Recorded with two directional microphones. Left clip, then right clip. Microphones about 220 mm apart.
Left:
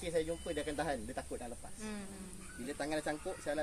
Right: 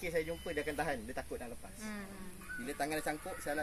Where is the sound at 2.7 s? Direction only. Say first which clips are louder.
Even; 50° right (ahead or behind).